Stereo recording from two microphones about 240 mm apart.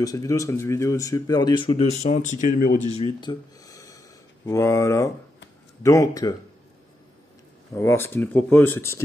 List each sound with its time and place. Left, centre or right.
0.0 s speech: centre
7.7 s speech: centre